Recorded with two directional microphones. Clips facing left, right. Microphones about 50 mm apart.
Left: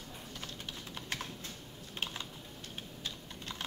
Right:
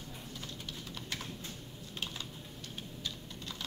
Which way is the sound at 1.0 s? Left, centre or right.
Left.